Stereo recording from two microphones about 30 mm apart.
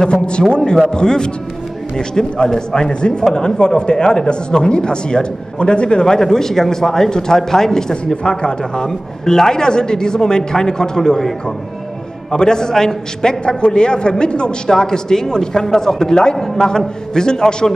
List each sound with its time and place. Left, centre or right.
0.1 s a man's voice: left
3.3 s a man's voice: left
6.1 s a man's voice: centre
8.1 s a man's voice: left
12.4 s a man's voice: left
14.7 s a man's voice: left